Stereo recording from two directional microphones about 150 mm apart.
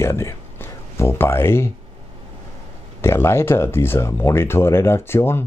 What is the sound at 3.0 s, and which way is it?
Speech, 15° left (ahead or behind).